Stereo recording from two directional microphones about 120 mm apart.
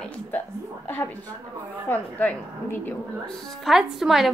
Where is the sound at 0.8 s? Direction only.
15° left (ahead or behind).